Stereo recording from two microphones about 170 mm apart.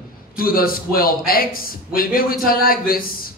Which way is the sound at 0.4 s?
60° left (ahead or behind).